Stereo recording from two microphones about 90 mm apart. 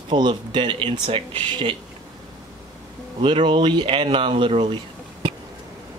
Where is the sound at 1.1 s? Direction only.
80° right.